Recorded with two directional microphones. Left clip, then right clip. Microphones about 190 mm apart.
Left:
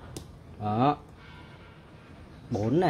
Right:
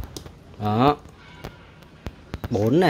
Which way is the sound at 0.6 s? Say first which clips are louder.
Right 6 dB; 30° right (ahead or behind).